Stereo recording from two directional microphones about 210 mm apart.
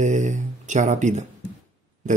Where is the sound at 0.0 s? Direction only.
35° right (ahead or behind).